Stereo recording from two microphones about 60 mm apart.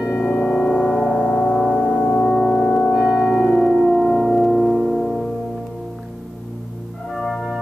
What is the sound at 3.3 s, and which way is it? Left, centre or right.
Music, centre.